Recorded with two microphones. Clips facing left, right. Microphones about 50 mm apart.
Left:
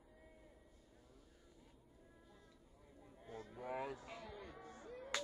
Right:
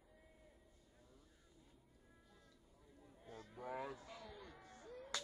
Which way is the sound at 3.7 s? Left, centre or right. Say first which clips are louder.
Left 2 dB; left.